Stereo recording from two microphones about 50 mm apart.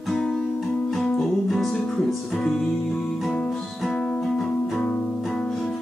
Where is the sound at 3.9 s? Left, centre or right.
Centre.